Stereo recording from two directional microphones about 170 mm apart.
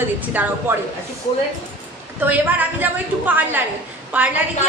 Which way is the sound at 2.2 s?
10° right (ahead or behind).